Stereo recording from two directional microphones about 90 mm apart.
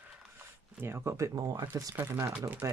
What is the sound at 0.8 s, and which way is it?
Speech, 30° right (ahead or behind).